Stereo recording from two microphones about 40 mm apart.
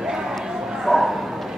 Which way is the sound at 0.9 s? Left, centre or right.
Centre.